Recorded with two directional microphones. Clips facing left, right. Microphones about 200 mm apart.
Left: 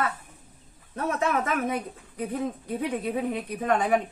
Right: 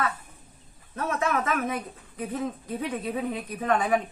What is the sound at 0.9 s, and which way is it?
Speech, 15° left (ahead or behind).